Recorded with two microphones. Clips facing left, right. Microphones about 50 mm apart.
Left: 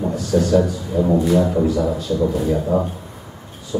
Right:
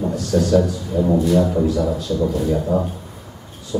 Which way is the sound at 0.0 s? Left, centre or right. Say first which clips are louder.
Left 1 dB; centre.